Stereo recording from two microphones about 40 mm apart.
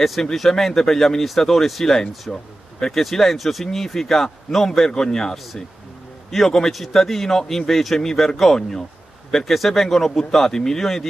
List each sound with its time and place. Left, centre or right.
0.0 s a man's voice: centre
2.3 s speech: left
2.8 s a man's voice: centre